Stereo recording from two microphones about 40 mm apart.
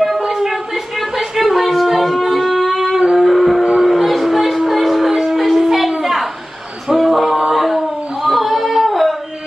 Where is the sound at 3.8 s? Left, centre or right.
Centre.